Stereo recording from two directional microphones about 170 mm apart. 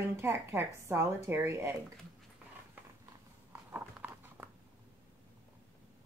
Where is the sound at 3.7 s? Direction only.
10° right (ahead or behind).